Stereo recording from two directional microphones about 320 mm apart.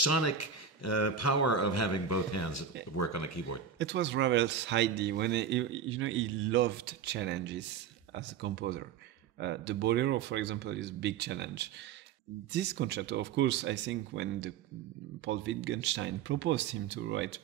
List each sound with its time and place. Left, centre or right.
0.0 s speech: left
3.7 s speech: right